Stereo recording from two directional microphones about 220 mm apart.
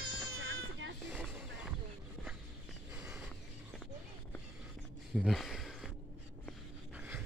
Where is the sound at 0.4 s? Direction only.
55° right (ahead or behind).